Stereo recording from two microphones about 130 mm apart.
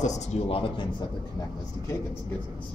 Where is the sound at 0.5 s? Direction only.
45° left (ahead or behind).